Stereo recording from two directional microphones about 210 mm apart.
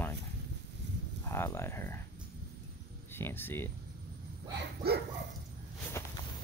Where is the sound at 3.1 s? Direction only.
10° left (ahead or behind).